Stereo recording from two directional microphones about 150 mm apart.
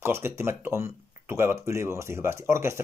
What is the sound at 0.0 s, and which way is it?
Speech, 15° right (ahead or behind).